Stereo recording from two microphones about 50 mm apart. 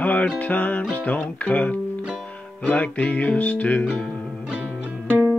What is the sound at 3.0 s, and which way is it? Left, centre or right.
Music, left.